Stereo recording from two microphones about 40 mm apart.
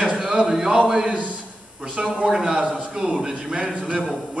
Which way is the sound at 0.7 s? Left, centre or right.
Right.